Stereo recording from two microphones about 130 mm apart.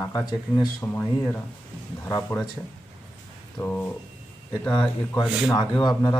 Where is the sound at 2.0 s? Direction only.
15° left (ahead or behind).